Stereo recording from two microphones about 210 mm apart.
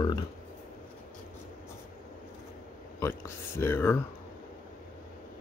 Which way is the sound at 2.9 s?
10° left (ahead or behind).